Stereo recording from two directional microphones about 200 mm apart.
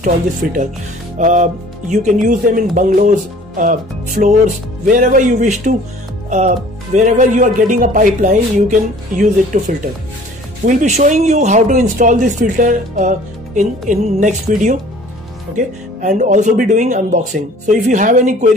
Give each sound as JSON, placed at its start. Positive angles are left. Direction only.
{"t": 1.1, "sound": "speech", "side_deg": -40}
{"t": 7.0, "sound": "speech", "side_deg": -40}